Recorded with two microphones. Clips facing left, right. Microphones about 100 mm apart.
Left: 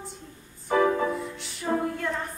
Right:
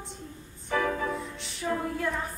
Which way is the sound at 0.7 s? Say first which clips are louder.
Left 6 dB; 25° left (ahead or behind).